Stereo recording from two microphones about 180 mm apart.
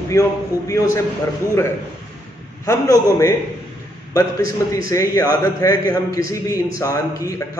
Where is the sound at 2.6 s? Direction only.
20° left (ahead or behind).